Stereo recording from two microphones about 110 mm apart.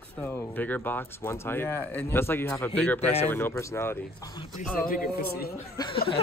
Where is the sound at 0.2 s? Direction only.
15° left (ahead or behind).